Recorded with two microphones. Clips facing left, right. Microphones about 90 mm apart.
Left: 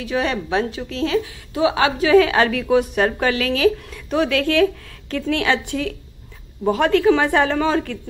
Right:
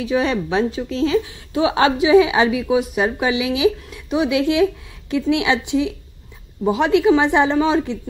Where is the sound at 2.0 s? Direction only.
15° right (ahead or behind).